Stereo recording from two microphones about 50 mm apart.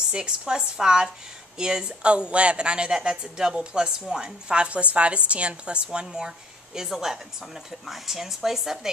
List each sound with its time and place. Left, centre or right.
0.1 s speech: centre
1.9 s a woman's voice: centre